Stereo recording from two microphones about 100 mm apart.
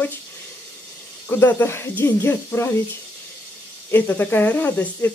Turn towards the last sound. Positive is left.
turn(degrees=20)  # may be behind; listen again after turning